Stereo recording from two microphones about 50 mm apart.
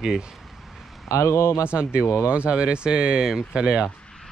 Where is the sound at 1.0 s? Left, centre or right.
Left.